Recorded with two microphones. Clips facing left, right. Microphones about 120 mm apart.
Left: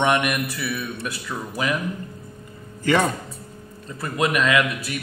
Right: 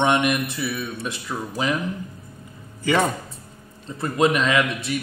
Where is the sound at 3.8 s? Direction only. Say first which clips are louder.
Right 4 dB; 25° right (ahead or behind).